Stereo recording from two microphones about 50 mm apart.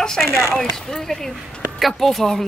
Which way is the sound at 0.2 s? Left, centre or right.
Left.